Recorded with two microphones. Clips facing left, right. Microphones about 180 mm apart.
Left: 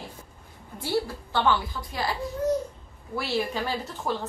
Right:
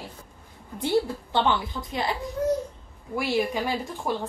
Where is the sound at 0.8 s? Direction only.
20° right (ahead or behind).